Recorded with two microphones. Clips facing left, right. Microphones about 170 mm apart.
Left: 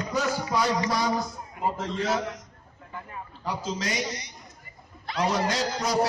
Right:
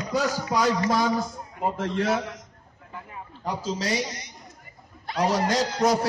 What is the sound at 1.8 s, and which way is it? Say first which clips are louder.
Speech: right 4 dB; 60° right (ahead or behind).